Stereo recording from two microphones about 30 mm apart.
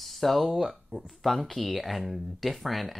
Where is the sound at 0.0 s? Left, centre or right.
Centre.